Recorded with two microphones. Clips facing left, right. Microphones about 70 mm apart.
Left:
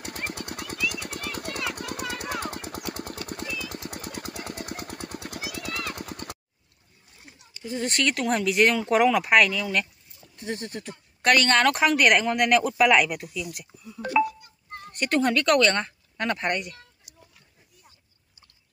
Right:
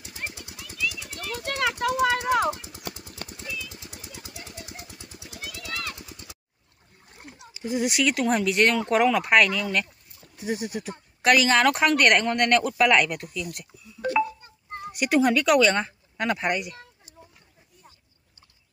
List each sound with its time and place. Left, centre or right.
0.0 s jackhammer: left
0.8 s a sound: left
1.8 s a sound: right
2.5 s vehicle: left
2.9 s a sound: left
3.3 s jackhammer: left
5.7 s clip-clop: centre
5.9 s neigh: left
7.1 s splash: right
7.5 s speech: centre
14.2 s a sound: right
14.8 s speech: centre